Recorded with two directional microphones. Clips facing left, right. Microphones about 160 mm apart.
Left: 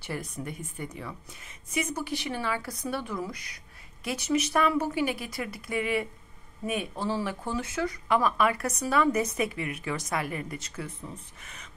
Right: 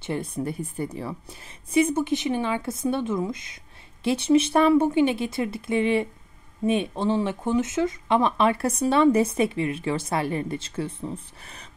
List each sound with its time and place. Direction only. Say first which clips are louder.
0.0 s a woman's voice: right 7 dB; 25° right (ahead or behind)